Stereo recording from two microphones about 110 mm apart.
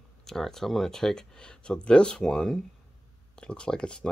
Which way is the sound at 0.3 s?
5° left (ahead or behind).